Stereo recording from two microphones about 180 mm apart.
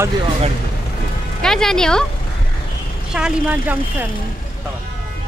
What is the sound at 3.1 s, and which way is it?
Speech, 5° right (ahead or behind).